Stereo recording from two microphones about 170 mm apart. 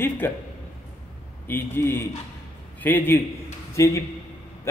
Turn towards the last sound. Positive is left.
turn(degrees=20)  # may be behind; listen again after turning